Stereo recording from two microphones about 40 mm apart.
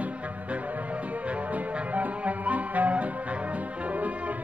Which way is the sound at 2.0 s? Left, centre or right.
Right.